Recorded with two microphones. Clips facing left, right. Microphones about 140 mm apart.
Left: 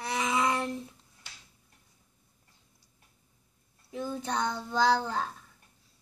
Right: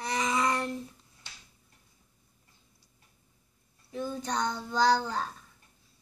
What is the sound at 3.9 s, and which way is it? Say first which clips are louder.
Child singing: even; 10° left (ahead or behind).